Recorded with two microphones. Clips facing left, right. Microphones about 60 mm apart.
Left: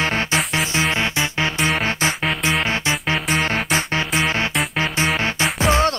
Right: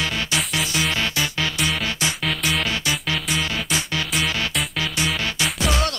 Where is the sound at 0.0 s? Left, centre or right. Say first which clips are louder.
Left 4 dB; left.